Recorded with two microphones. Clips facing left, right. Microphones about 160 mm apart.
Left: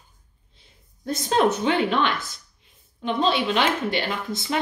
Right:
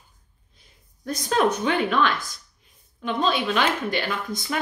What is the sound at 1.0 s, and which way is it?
Speech, 25° left (ahead or behind).